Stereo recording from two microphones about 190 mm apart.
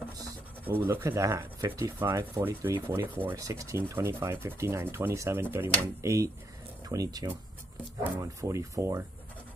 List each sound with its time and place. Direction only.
0.2 s speech: 10° right (ahead or behind)